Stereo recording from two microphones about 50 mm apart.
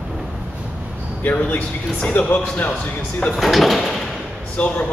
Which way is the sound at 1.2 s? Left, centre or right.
Left.